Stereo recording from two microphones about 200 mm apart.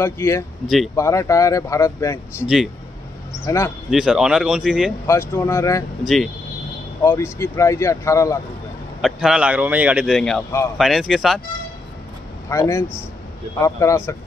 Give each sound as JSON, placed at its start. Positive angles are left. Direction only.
{"t": 0.0, "sound": "speech", "side_deg": 15}
{"t": 2.4, "sound": "a man's voice", "side_deg": 0}
{"t": 3.4, "sound": "speech", "side_deg": 15}
{"t": 3.9, "sound": "a man's voice", "side_deg": -5}
{"t": 5.0, "sound": "speech", "side_deg": 15}
{"t": 6.0, "sound": "a man's voice", "side_deg": 0}
{"t": 7.0, "sound": "speech", "side_deg": 15}
{"t": 9.0, "sound": "a man's voice", "side_deg": -5}
{"t": 12.4, "sound": "speech", "side_deg": 15}